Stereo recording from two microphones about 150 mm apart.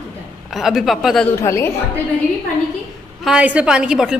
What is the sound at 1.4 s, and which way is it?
Speech, 20° left (ahead or behind).